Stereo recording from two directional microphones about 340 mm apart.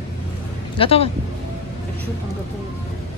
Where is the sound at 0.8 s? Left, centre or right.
Centre.